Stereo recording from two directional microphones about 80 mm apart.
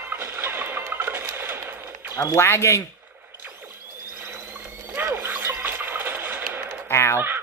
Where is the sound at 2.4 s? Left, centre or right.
Left.